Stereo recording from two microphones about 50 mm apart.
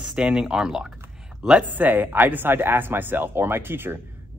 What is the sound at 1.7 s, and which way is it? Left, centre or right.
Speech, right.